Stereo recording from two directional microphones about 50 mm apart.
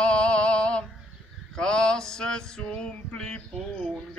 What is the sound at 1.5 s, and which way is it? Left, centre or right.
Male singing, centre.